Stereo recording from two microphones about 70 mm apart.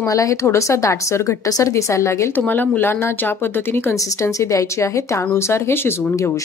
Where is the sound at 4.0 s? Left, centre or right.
Left.